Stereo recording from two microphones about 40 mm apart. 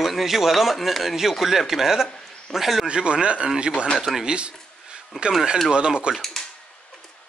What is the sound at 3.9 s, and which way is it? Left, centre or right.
Speech, centre.